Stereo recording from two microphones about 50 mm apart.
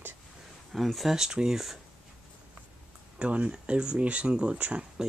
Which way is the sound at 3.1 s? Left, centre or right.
Right.